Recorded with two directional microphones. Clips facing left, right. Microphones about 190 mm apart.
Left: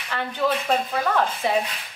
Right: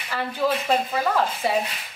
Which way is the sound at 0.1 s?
5° right (ahead or behind).